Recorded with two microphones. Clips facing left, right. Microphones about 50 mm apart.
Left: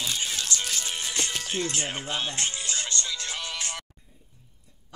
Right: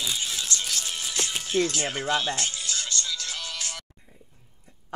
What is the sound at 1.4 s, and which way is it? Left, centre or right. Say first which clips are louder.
Speech: right 5 dB; left.